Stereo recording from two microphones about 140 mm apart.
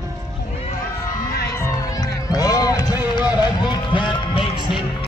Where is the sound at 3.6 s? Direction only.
35° left (ahead or behind).